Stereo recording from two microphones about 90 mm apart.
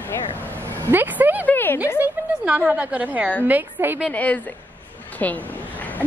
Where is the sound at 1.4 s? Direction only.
25° left (ahead or behind).